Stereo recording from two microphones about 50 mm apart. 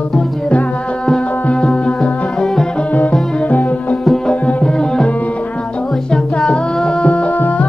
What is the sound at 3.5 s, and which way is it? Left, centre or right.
Music, left.